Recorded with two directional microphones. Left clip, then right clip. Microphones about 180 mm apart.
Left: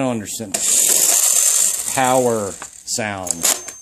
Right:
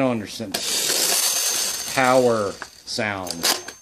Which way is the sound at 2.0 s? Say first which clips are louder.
Left 1 dB; 40° left (ahead or behind).